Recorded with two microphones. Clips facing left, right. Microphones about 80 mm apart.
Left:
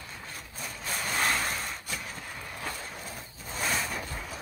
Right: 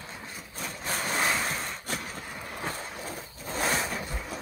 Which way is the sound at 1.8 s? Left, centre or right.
Right.